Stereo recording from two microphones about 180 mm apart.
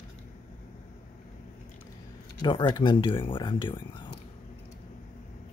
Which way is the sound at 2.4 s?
25° left (ahead or behind).